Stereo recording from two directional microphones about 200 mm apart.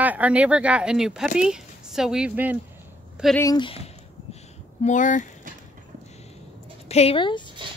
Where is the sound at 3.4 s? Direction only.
20° left (ahead or behind).